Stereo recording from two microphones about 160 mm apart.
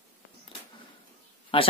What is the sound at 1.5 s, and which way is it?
Speech, 35° left (ahead or behind).